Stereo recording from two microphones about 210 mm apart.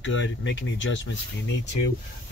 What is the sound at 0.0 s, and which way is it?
Speech, 65° left (ahead or behind).